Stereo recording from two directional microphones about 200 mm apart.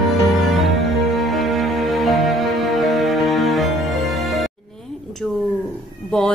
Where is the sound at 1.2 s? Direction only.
Centre (ahead or behind).